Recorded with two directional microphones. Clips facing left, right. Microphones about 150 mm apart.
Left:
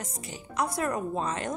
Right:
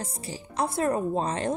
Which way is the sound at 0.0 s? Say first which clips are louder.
Right 3 dB; 30° right (ahead or behind).